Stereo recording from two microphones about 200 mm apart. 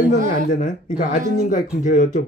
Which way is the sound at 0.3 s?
40° left (ahead or behind).